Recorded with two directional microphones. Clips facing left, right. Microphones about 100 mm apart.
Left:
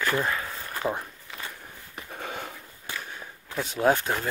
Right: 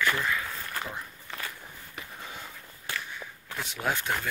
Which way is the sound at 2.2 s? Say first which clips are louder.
Left 10 dB; 65° left (ahead or behind).